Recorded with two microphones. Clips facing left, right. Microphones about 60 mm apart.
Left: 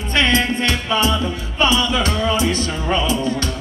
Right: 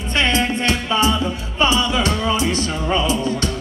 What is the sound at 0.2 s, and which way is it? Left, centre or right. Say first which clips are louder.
Music: left 1 dB; right.